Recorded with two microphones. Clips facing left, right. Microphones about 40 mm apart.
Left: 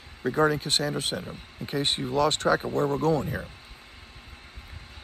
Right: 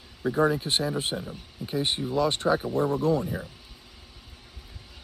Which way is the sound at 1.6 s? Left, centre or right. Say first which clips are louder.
Even; left.